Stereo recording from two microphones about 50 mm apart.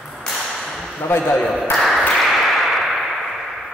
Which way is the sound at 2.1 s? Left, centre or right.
Centre.